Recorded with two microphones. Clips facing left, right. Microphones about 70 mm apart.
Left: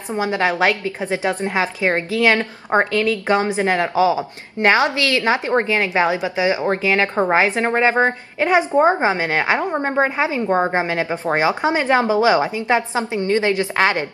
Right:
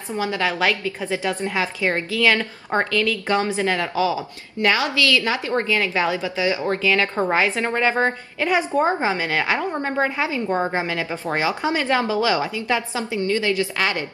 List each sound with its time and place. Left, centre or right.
0.1 s a woman's voice: left